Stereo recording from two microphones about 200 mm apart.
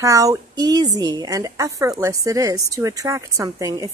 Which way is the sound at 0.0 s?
15° right (ahead or behind).